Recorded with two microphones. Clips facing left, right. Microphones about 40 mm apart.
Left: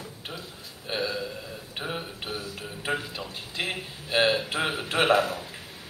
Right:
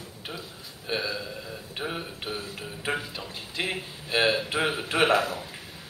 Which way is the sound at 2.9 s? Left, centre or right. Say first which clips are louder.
Left 1 dB; centre.